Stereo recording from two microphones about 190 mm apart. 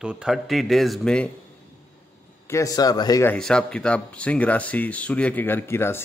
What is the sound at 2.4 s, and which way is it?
Speech, 15° left (ahead or behind).